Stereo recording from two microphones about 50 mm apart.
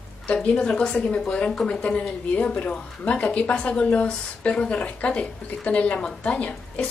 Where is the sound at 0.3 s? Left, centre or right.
Left.